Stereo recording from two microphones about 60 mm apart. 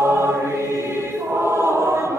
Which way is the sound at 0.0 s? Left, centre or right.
Right.